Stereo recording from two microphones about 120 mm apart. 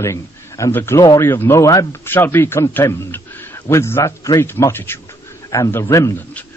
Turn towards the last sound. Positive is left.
turn(degrees=25)  # may be behind; listen again after turning